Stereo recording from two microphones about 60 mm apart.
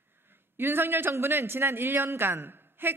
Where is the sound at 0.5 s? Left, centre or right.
Right.